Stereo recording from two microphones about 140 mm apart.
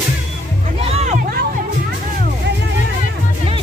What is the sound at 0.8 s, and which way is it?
Music, 50° right (ahead or behind).